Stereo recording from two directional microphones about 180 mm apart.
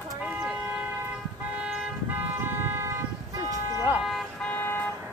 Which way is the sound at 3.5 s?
15° right (ahead or behind).